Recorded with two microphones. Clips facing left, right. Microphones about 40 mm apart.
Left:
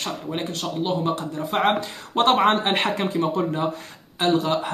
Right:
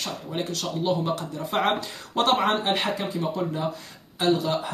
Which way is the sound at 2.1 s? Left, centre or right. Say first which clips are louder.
Left 4 dB; left.